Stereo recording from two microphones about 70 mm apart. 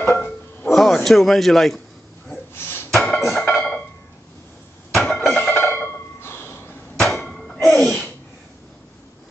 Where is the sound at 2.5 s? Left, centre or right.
Left.